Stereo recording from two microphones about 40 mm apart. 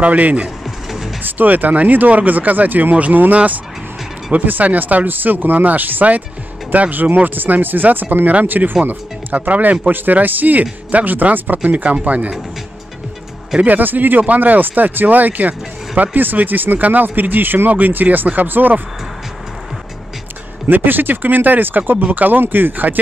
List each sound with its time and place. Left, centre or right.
0.0 s speech: right
0.7 s music: centre
1.2 s speech: right
13.6 s speech: right
20.6 s speech: right